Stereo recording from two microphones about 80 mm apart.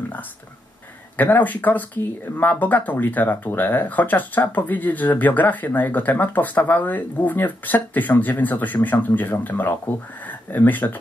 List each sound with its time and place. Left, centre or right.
1.1 s speech: left